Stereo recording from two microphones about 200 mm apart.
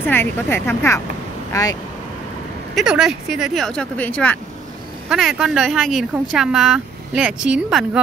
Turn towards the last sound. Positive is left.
turn(degrees=-5)  # may be behind; listen again after turning